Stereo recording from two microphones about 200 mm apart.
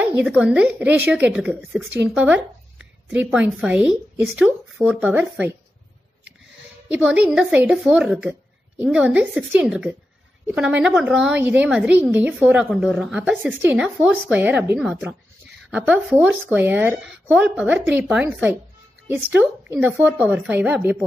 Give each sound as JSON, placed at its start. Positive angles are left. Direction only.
{"t": 0.0, "sound": "a woman's voice", "side_deg": -5}
{"t": 6.9, "sound": "a woman's voice", "side_deg": -5}